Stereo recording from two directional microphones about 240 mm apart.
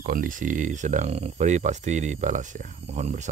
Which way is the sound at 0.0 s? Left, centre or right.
Right.